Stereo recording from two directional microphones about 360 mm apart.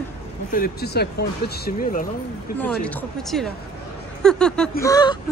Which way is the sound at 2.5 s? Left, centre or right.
Centre.